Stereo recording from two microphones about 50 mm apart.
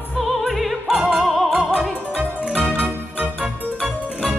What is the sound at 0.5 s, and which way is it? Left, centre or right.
Music, centre.